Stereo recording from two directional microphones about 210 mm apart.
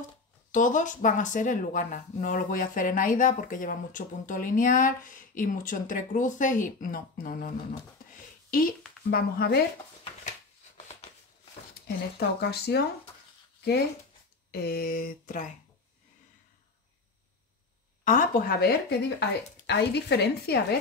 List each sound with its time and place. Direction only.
0.5 s speech: 35° left (ahead or behind)
12.2 s speech: 50° left (ahead or behind)
14.5 s speech: 45° left (ahead or behind)
18.0 s speech: 40° left (ahead or behind)